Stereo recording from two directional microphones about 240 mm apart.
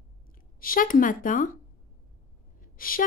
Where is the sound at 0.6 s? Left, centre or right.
Left.